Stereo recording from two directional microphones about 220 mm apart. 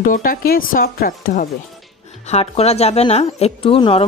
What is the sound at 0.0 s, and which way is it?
Speech, 40° left (ahead or behind).